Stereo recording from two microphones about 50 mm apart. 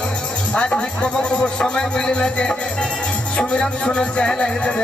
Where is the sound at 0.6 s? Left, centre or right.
Centre.